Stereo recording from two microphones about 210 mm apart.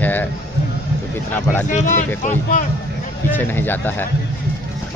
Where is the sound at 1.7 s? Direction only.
40° left (ahead or behind).